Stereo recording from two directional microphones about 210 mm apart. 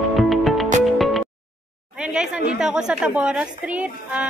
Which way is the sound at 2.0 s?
5° right (ahead or behind).